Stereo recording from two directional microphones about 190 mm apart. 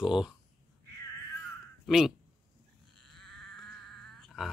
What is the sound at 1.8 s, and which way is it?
Speech, centre (ahead or behind).